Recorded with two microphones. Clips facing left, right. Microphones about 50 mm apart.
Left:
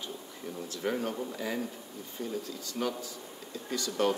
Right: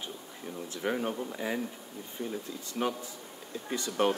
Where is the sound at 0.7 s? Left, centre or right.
Right.